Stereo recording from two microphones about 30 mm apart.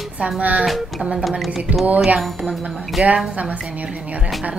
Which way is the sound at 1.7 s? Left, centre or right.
Right.